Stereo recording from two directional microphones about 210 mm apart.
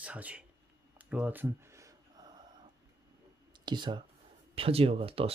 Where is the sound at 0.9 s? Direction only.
5° right (ahead or behind).